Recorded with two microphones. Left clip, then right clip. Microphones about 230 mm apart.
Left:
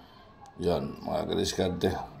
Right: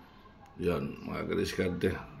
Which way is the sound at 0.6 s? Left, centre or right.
Right.